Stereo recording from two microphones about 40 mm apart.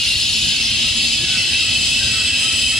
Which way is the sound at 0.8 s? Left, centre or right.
Centre.